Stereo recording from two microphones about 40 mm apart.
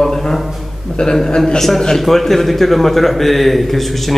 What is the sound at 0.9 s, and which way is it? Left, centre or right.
A man's voice, centre.